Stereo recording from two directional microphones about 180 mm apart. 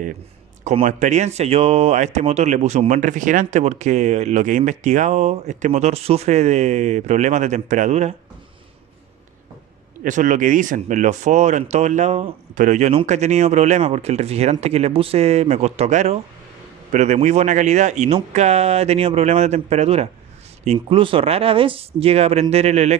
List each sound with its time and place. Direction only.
0.7 s speech: 40° right (ahead or behind)
10.0 s speech: 45° right (ahead or behind)